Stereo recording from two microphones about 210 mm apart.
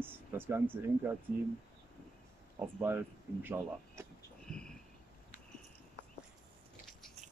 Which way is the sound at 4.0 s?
15° right (ahead or behind).